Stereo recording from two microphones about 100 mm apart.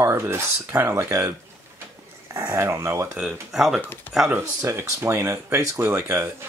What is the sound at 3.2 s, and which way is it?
Speech, centre (ahead or behind).